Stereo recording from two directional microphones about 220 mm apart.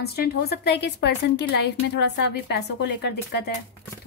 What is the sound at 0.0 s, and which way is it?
A woman's voice, 45° left (ahead or behind).